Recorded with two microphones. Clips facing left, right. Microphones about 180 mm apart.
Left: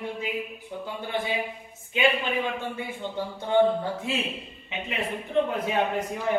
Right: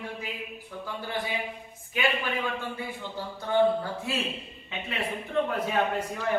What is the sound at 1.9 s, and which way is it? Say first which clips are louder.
A man's voice: left 4 dB; 20° left (ahead or behind).